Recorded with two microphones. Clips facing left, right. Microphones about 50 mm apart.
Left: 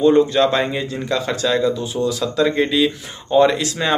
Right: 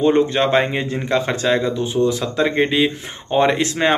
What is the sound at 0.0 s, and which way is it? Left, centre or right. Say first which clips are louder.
A man's voice: left 2 dB; right.